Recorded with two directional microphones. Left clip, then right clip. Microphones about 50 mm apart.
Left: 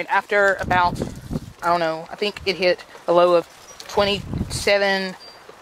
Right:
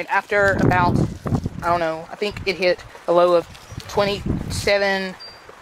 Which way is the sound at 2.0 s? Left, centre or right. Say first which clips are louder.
Even; centre.